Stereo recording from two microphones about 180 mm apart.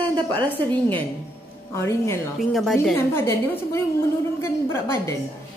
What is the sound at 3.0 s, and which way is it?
Speech, 15° left (ahead or behind).